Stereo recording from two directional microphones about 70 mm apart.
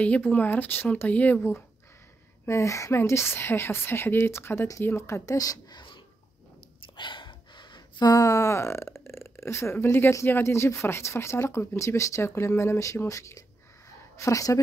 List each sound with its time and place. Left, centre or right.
0.0 s speech: centre
2.4 s speech: left
7.7 s speech: left